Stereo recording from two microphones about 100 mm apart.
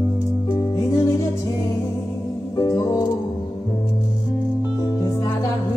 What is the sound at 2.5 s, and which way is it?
Music, 35° left (ahead or behind).